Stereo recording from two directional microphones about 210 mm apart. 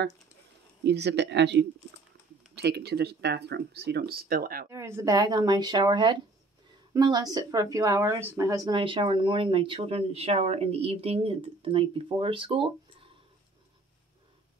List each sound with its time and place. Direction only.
0.8 s speech: 55° right (ahead or behind)
4.6 s a woman's voice: 15° right (ahead or behind)